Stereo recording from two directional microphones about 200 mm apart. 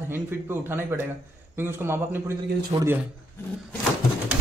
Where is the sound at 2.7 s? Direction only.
25° right (ahead or behind).